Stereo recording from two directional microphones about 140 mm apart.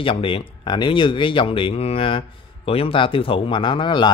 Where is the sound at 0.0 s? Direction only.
40° left (ahead or behind).